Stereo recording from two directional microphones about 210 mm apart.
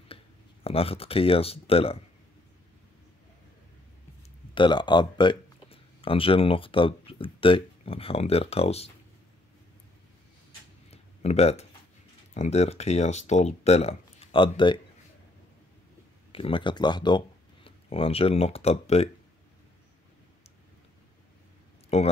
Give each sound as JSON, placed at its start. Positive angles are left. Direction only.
{"t": 0.7, "sound": "speech", "side_deg": 25}
{"t": 4.6, "sound": "speech", "side_deg": 20}
{"t": 10.9, "sound": "a sound", "side_deg": 30}
{"t": 12.4, "sound": "speech", "side_deg": 30}
{"t": 16.3, "sound": "speech", "side_deg": 25}
{"t": 21.9, "sound": "speech", "side_deg": 30}